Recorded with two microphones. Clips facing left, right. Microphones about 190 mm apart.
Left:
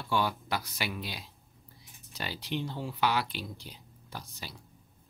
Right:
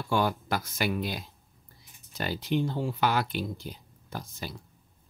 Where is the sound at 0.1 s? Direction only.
50° right (ahead or behind).